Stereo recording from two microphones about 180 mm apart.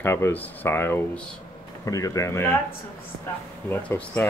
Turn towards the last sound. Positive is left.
turn(degrees=10)  # may be behind; listen again after turning